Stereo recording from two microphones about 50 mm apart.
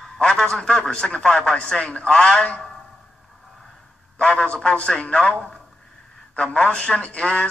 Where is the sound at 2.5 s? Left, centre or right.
Centre.